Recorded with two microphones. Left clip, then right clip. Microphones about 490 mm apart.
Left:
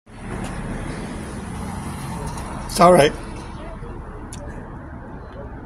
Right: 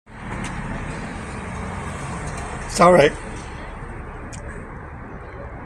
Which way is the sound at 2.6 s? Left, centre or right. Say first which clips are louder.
Even; left.